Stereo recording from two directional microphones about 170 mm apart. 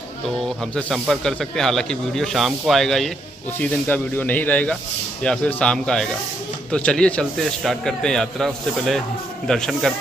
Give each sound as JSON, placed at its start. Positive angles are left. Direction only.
{"t": 0.7, "sound": "speech", "side_deg": 0}